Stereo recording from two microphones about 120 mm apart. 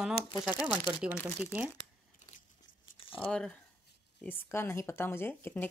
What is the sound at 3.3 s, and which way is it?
Speech, 5° left (ahead or behind).